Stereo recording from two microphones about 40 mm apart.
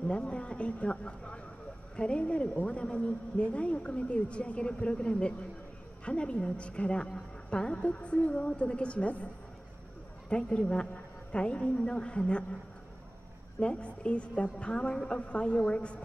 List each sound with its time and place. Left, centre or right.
0.3 s speech: left
10.3 s speech: left
13.6 s speech: left